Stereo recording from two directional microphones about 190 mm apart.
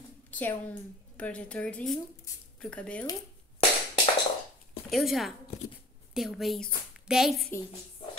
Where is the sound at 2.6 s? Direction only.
5° left (ahead or behind).